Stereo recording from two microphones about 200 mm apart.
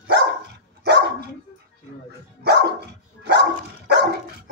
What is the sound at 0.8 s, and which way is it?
Dog, 55° right (ahead or behind).